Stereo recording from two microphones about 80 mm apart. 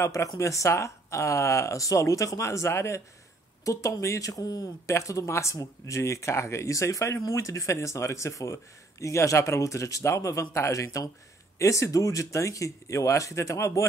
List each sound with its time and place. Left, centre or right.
0.0 s speech: left
4.8 s speech: left